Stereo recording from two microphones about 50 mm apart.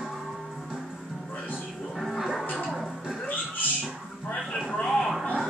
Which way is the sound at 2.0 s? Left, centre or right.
Centre.